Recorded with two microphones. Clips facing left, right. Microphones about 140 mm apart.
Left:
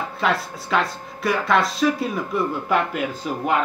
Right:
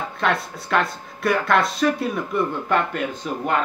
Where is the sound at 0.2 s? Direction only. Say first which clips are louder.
Even; centre (ahead or behind).